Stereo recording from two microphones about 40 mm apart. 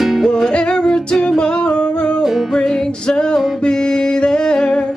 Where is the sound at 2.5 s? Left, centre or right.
Centre.